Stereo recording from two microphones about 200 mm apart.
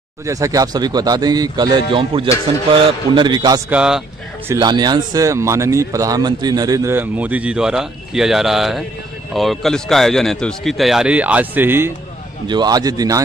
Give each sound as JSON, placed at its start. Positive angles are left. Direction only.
{"t": 0.3, "sound": "a man's voice", "side_deg": -15}
{"t": 3.7, "sound": "a man's voice", "side_deg": -5}
{"t": 4.5, "sound": "a man's voice", "side_deg": -20}
{"t": 12.4, "sound": "a man's voice", "side_deg": -20}